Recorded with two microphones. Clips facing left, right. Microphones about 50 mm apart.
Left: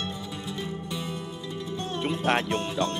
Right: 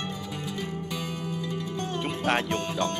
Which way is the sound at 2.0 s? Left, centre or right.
Centre.